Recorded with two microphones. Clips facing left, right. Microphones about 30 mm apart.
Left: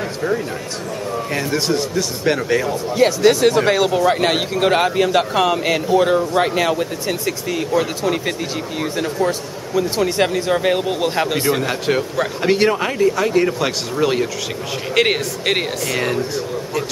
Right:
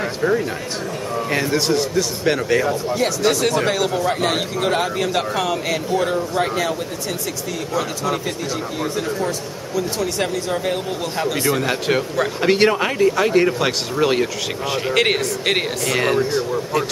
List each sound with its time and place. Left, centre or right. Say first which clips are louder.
1.1 s speech: right 2 dB; centre
3.2 s a man's voice: left 4 dB; centre
5.4 s speech: left 4 dB; left
5.9 s a man's voice: left 6 dB; centre
9.8 s speech: left 5 dB; left
11.6 s a man's voice: even; centre